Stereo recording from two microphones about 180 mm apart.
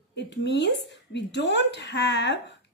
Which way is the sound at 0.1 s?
75° left (ahead or behind).